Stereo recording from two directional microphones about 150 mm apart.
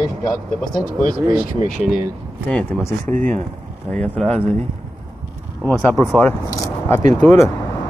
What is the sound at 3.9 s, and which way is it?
Speech, 5° left (ahead or behind).